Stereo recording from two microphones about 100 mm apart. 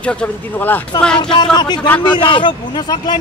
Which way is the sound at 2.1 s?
55° left (ahead or behind).